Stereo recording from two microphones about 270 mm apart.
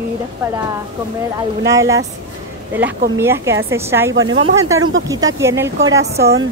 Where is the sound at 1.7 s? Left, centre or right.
Centre.